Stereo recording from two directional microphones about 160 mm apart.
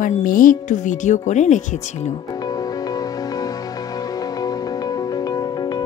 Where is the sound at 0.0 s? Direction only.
60° left (ahead or behind).